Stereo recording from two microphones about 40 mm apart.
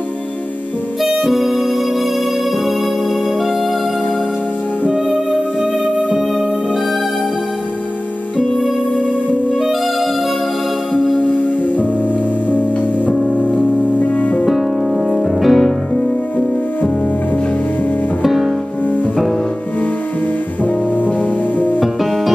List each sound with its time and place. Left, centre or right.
1.0 s music: centre
10.9 s music: centre
13.1 s music: centre
13.4 s music: right
13.9 s music: left
15.0 s music: centre
18.2 s music: centre